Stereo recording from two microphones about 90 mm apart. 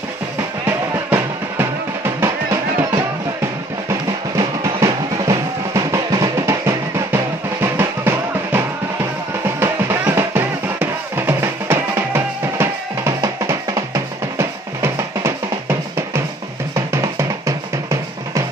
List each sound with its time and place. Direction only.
0.7 s music: 25° right (ahead or behind)
4.7 s drum: 35° right (ahead or behind)
7.6 s music: 25° right (ahead or behind)
13.4 s music: 40° right (ahead or behind)
16.7 s music: 35° right (ahead or behind)